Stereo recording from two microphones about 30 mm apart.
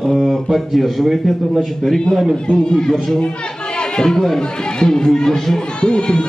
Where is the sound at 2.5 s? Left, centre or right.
Left.